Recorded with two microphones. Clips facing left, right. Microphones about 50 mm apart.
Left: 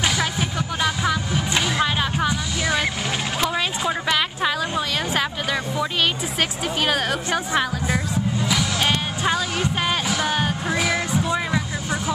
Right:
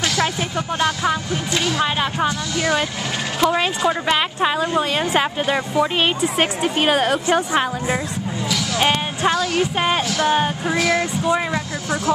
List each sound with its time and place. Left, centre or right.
0.0 s music: centre
3.3 s speech: centre
4.5 s speech: right
8.7 s music: right
9.6 s speech: centre
10.0 s music: centre
10.3 s speech: centre
10.8 s music: centre